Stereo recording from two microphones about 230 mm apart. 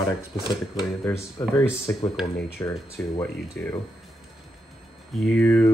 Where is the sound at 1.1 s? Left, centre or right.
Centre.